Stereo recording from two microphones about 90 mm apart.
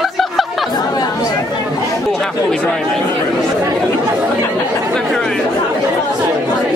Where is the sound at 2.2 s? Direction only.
5° left (ahead or behind).